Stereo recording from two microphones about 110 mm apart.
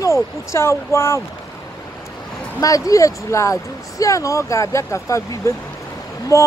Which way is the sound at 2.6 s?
30° left (ahead or behind).